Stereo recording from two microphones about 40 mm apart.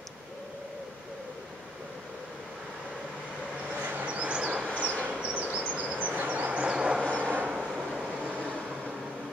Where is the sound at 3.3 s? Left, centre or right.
Right.